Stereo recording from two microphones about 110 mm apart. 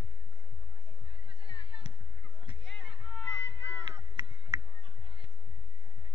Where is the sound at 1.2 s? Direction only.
55° right (ahead or behind).